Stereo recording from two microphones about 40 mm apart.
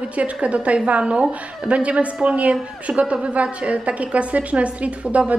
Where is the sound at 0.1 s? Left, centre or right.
Right.